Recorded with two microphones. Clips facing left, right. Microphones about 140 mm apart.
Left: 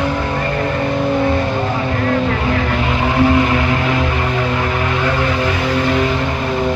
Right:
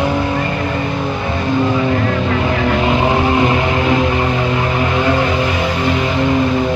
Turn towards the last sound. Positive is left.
turn(degrees=-15)  # may be behind; listen again after turning